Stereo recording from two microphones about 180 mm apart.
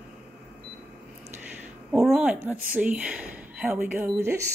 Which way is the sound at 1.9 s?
Centre (ahead or behind).